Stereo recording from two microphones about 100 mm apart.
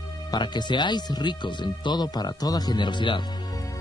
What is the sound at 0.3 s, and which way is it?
Speech, 45° left (ahead or behind).